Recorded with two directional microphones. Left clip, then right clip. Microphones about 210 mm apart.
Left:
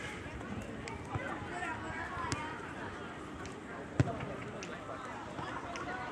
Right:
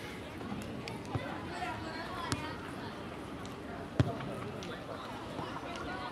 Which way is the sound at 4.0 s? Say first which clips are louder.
Right 1 dB; 25° right (ahead or behind).